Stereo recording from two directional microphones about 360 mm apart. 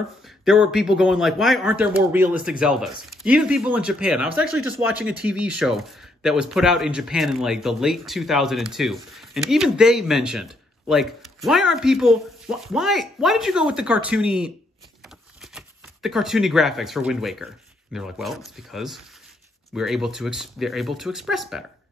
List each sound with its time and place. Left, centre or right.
0.5 s speech: centre
4.3 s speech: left
4.6 s speech: centre
15.5 s speech: centre